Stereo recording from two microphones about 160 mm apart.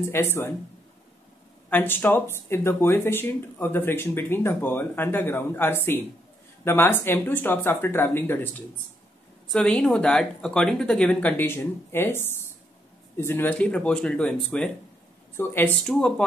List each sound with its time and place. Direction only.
0.1 s speech: 15° left (ahead or behind)
1.7 s speech: 10° left (ahead or behind)